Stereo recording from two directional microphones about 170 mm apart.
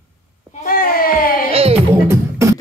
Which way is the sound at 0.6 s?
55° left (ahead or behind).